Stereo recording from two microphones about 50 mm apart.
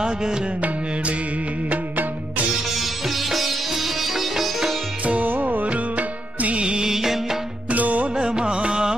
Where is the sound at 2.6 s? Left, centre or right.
Centre.